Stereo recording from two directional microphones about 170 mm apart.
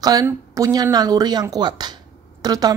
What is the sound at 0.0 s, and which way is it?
Speech, 20° right (ahead or behind).